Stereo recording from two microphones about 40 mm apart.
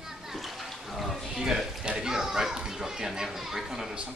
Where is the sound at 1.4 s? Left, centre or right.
Centre.